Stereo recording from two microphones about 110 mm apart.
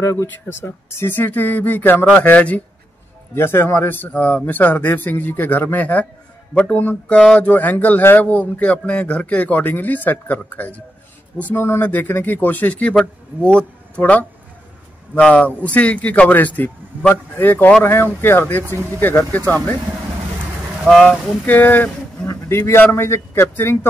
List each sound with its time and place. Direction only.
0.0 s a man's voice: 25° left (ahead or behind)
20.8 s speech: centre (ahead or behind)
21.5 s a man's voice: 15° left (ahead or behind)